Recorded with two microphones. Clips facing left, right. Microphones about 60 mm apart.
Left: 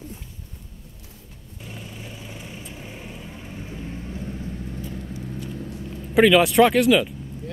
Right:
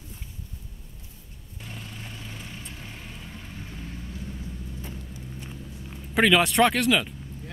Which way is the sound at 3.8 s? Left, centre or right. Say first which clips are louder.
Left 6 dB; left.